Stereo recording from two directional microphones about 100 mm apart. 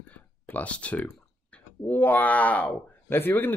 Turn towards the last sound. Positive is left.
turn(degrees=20)  # may be behind; listen again after turning